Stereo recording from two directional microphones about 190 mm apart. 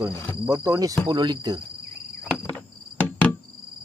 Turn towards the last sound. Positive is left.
turn(degrees=10)  # may be behind; listen again after turning